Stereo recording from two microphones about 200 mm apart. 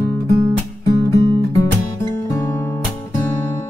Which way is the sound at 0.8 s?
15° left (ahead or behind).